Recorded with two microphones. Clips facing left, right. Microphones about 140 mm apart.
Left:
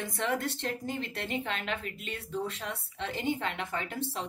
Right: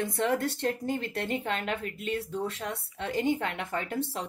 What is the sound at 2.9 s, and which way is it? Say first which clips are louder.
Speech: right 4 dB; 50° right (ahead or behind).